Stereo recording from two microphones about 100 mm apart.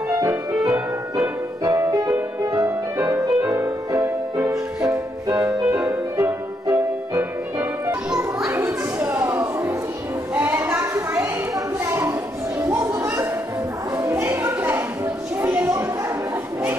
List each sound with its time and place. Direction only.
0.1 s music: 30° right (ahead or behind)
6.2 s music: 20° right (ahead or behind)
8.5 s children playing: 25° right (ahead or behind)
10.3 s a sound: 20° right (ahead or behind)